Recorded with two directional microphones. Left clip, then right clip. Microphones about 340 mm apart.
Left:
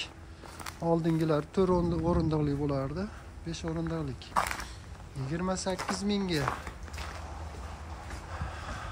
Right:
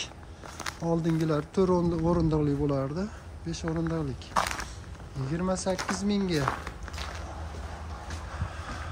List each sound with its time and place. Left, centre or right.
0.8 s speech: centre
8.6 s vehicle: centre